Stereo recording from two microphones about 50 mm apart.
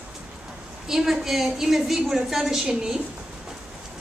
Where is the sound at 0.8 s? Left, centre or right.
Centre.